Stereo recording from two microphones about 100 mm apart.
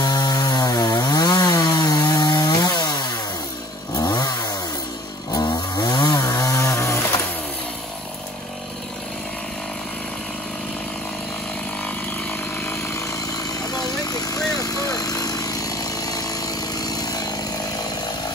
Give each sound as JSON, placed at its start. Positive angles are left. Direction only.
{"t": 0.0, "sound": "chainsaw", "side_deg": 45}
{"t": 11.8, "sound": "chainsaw", "side_deg": 20}